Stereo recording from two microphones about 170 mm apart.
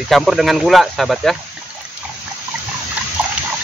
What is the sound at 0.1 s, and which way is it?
Speech, centre (ahead or behind).